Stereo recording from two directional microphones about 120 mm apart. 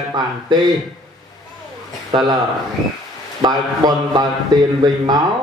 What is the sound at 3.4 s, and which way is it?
Speech, 35° right (ahead or behind).